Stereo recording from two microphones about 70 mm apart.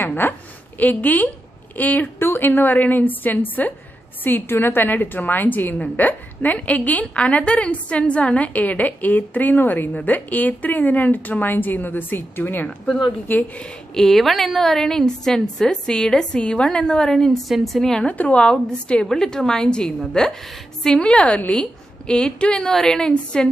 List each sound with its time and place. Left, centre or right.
0.0 s a sound: left
0.7 s a woman's voice: left
12.6 s a woman's voice: centre
13.9 s a woman's voice: centre
18.0 s a woman's voice: left